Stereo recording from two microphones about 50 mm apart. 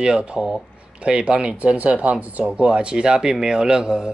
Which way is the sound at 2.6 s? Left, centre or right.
Right.